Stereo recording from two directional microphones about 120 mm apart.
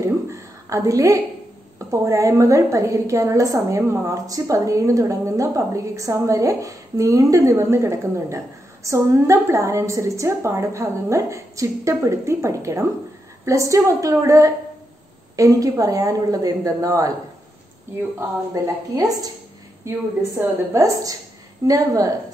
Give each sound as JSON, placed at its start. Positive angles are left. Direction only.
{"t": 0.0, "sound": "a sound", "side_deg": -25}
{"t": 1.8, "sound": "a woman's voice", "side_deg": -25}
{"t": 18.5, "sound": "a woman's voice", "side_deg": -30}